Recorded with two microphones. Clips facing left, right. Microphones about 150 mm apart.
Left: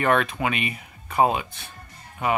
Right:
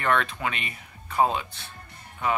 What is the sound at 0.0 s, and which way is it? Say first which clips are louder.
Speech: left 4 dB; 10° left (ahead or behind).